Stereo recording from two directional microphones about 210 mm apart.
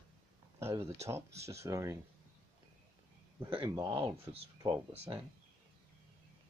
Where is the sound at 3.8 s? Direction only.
25° right (ahead or behind).